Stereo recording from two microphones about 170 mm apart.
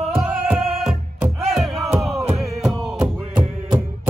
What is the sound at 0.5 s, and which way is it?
Music, centre (ahead or behind).